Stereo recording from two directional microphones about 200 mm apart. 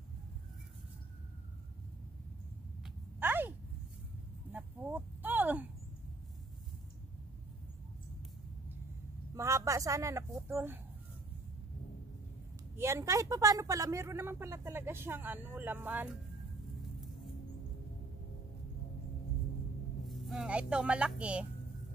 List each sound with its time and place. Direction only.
2.8 s a sound: 10° right (ahead or behind)
9.3 s a woman's voice: 15° right (ahead or behind)
12.7 s speech: 15° right (ahead or behind)
20.1 s speech: centre (ahead or behind)